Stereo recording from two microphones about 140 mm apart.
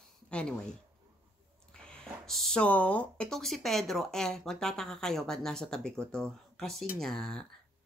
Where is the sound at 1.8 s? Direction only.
Centre (ahead or behind).